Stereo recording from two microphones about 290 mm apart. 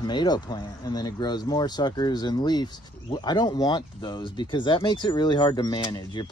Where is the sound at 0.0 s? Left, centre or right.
Centre.